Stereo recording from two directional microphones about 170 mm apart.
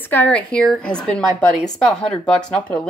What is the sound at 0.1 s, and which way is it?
A woman's voice, 10° left (ahead or behind).